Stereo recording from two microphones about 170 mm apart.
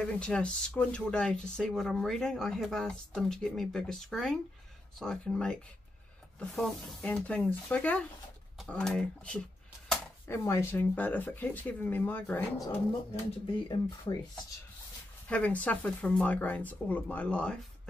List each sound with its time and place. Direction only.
0.0 s speech: 5° left (ahead or behind)
12.5 s speech: 20° left (ahead or behind)
15.2 s speech: 5° left (ahead or behind)